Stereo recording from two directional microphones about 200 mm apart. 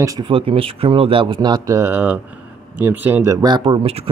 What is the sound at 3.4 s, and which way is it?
Speech, 25° right (ahead or behind).